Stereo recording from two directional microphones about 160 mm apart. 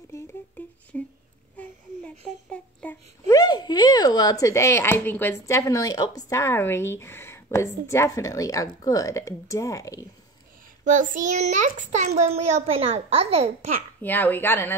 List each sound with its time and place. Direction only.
0.1 s a sound: 10° left (ahead or behind)
3.3 s speech: 25° left (ahead or behind)
10.9 s a child's voice: 55° right (ahead or behind)
14.0 s speech: 10° left (ahead or behind)